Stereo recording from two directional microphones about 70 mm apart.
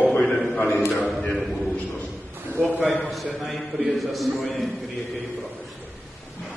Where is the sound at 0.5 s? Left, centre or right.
Left.